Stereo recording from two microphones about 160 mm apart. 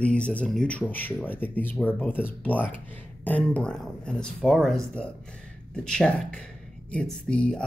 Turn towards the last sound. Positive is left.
turn(degrees=5)  # may be behind; listen again after turning